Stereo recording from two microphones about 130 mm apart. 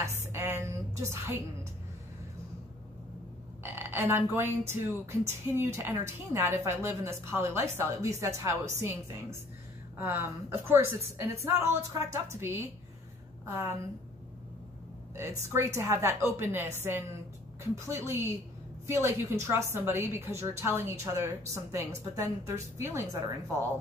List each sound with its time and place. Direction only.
0.3 s a sound: 20° right (ahead or behind)
3.6 s frog: 20° right (ahead or behind)
5.2 s a woman's voice: 20° right (ahead or behind)
15.1 s a woman's voice: 20° right (ahead or behind)